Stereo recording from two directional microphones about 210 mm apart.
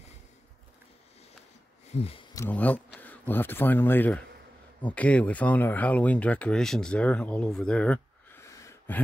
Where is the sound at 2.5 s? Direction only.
10° left (ahead or behind).